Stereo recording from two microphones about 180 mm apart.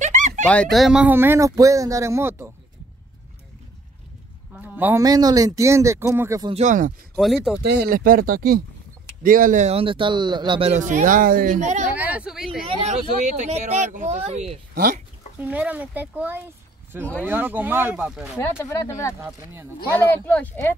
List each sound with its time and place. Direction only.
0.0 s a sound: 40° right (ahead or behind)
0.5 s speech: 5° left (ahead or behind); by 2.5 s 15° right (ahead or behind)
4.6 s speech: 10° right (ahead or behind)
6.5 s speech: 45° right (ahead or behind)
7.2 s speech: centre (ahead or behind)
7.6 s speech: 60° right (ahead or behind); by 11.9 s 40° right (ahead or behind)
11.9 s a sound: 10° right (ahead or behind)
13.5 s speech: 40° right (ahead or behind)
14.7 s speech: 55° right (ahead or behind)
15.3 s speech: 10° right (ahead or behind)
18.6 s speech: 15° left (ahead or behind)
19.1 s speech: 15° right (ahead or behind)
19.9 s speech: 10° left (ahead or behind)